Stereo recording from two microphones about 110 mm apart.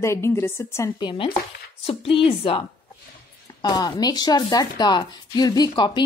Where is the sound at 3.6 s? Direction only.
40° left (ahead or behind).